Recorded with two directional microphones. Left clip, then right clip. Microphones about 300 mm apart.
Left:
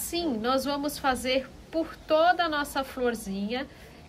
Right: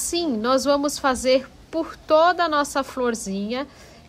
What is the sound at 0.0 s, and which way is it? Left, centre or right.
A woman's voice, centre.